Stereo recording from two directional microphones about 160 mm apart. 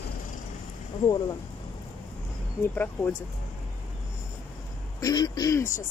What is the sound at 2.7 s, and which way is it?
Speech, 10° left (ahead or behind).